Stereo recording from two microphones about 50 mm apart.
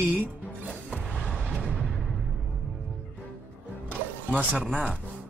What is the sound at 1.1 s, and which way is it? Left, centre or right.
Music, left.